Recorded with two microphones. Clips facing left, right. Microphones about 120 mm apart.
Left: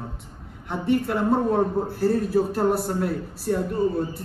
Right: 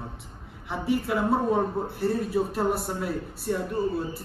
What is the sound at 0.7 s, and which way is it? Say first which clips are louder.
A man's voice: left 3 dB; centre (ahead or behind).